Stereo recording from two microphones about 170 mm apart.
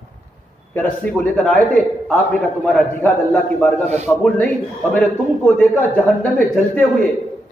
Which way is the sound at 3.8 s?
40° right (ahead or behind).